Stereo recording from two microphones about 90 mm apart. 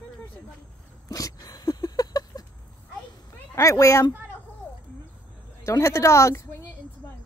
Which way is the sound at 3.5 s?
35° left (ahead or behind).